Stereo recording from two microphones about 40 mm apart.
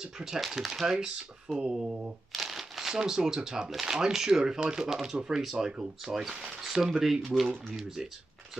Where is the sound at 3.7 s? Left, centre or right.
Centre.